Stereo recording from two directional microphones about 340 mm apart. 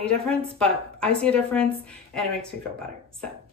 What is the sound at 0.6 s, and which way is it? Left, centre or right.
A woman's voice, centre.